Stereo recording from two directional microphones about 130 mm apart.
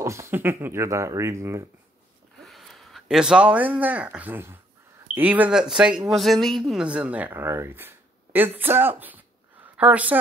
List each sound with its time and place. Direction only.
0.0 s speech: 20° right (ahead or behind)
2.4 s speech: centre (ahead or behind)